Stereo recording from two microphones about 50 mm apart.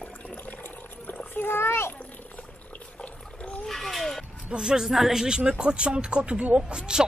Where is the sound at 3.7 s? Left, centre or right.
Centre.